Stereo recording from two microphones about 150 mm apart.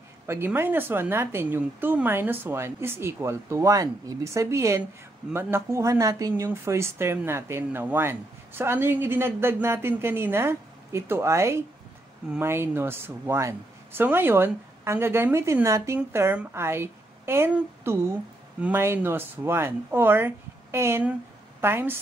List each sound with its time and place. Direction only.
0.3 s a woman's voice: 15° right (ahead or behind)